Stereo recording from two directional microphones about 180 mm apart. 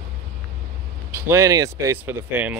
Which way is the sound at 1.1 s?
15° right (ahead or behind).